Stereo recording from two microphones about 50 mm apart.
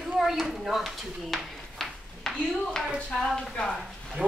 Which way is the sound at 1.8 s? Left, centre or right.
Centre.